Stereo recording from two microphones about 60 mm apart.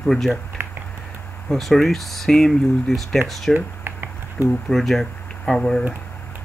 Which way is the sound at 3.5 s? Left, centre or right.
Right.